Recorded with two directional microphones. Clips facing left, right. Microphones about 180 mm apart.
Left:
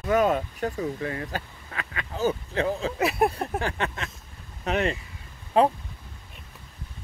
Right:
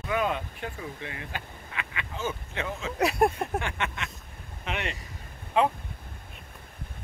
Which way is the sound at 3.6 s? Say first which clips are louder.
Left 4 dB; 35° left (ahead or behind).